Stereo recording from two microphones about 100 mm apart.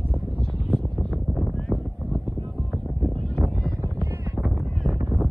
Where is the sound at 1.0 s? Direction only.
10° left (ahead or behind).